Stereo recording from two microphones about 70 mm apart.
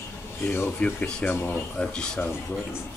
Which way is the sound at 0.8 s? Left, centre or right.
Centre.